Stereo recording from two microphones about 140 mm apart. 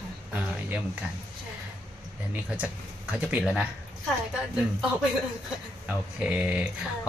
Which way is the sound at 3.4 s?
Centre (ahead or behind).